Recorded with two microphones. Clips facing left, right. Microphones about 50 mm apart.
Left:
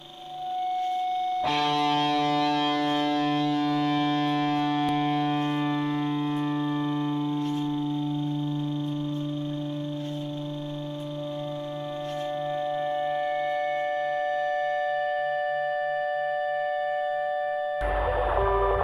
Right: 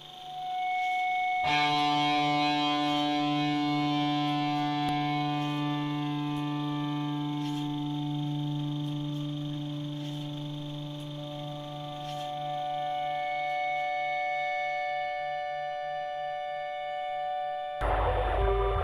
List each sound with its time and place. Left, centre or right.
0.7 s music: right
1.4 s music: left
1.9 s music: left
2.9 s music: left
3.2 s civil defense siren: left
3.8 s a sound: left
5.0 s siren: left
12.6 s music: left
17.8 s music: centre